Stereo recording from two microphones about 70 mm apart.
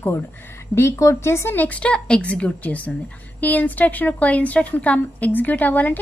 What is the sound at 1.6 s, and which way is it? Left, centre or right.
A woman's voice, left.